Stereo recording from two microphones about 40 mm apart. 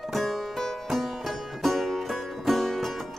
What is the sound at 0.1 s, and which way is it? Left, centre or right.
Music, centre.